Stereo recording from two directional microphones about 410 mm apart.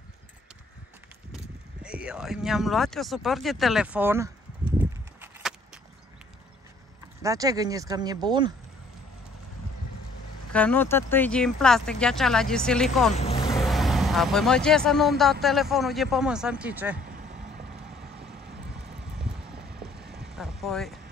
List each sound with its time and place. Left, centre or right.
1.3 s a sound: centre
7.2 s speech: centre
10.5 s speech: centre
13.1 s vehicle: centre
13.6 s speech: centre
17.0 s vehicle: centre
18.9 s a sound: centre
19.7 s vehicle: centre